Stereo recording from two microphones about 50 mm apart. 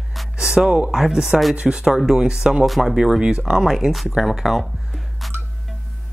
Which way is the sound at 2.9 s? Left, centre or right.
Centre.